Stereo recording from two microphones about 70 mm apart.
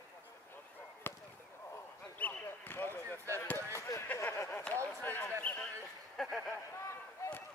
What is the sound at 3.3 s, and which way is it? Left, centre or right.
Chop, left.